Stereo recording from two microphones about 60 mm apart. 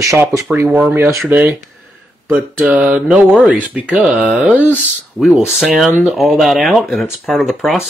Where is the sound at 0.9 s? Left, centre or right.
Right.